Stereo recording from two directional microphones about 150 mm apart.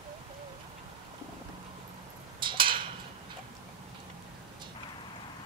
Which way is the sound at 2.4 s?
35° right (ahead or behind).